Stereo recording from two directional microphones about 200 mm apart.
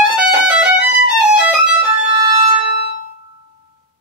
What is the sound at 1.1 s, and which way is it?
Music, 5° right (ahead or behind).